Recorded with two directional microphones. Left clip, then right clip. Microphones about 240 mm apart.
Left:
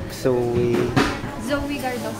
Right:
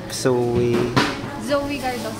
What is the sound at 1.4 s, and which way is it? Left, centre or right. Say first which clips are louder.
Speech: right 4 dB; centre.